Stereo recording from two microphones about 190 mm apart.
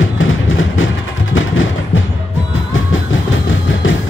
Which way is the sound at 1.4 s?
90° left.